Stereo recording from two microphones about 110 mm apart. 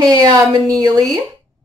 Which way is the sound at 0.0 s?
40° right (ahead or behind).